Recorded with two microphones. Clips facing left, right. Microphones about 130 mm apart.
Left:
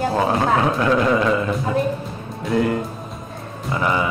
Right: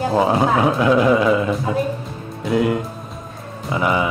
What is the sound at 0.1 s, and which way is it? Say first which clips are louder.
Speech: right 2 dB; 15° right (ahead or behind).